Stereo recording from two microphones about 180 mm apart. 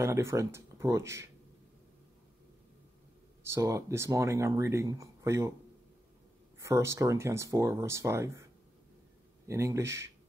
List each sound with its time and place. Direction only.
0.0 s speech: 15° right (ahead or behind)
3.4 s speech: 15° right (ahead or behind)
6.6 s speech: 15° right (ahead or behind)
9.5 s speech: 15° right (ahead or behind)